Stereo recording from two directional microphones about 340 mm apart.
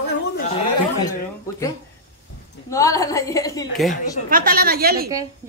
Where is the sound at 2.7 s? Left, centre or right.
Centre.